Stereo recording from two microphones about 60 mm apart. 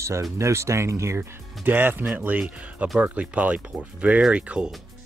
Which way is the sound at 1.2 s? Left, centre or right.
Right.